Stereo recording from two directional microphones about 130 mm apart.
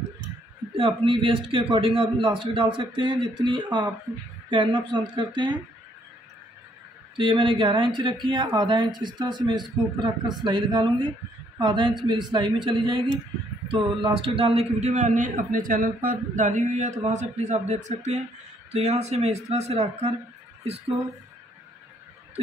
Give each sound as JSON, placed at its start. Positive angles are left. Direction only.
{"t": 0.7, "sound": "a man's voice", "side_deg": -40}
{"t": 7.2, "sound": "a man's voice", "side_deg": -40}